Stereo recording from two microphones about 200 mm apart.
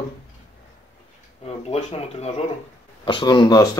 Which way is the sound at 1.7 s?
30° left (ahead or behind).